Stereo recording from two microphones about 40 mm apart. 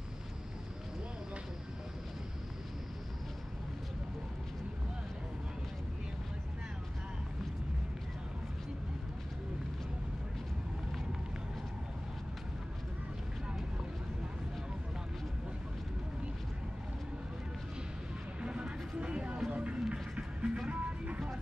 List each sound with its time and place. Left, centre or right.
18.4 s a sound: right
19.5 s music: right
20.7 s music: right